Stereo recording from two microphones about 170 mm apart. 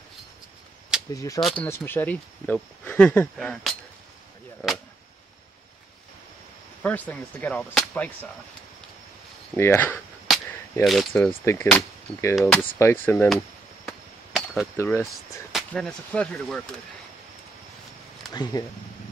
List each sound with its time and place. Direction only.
1.1 s speech: 20° left (ahead or behind); by 3.7 s centre (ahead or behind)
6.8 s speech: 10° left (ahead or behind)
9.6 s speech: 15° left (ahead or behind)
10.3 s cap gun: centre (ahead or behind)
11.1 s speech: 10° left (ahead or behind)
13.8 s a sound: centre (ahead or behind)
14.8 s speech: 15° left (ahead or behind)
15.5 s speech: 5° left (ahead or behind)
18.3 s speech: 25° left (ahead or behind)